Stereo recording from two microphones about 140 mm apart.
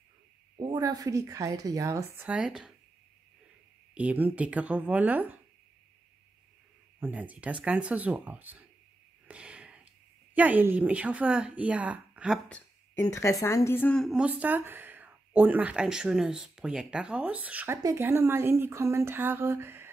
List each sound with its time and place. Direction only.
0.6 s speech: 30° right (ahead or behind)
2.3 s speech: 5° right (ahead or behind)
3.9 s speech: 10° right (ahead or behind)
7.0 s speech: 10° right (ahead or behind)
9.3 s a sound: 10° right (ahead or behind)
10.3 s speech: 10° right (ahead or behind)
12.4 s a sound: 10° left (ahead or behind)
13.0 s a woman's voice: 20° left (ahead or behind)
14.0 s speech: 5° right (ahead or behind)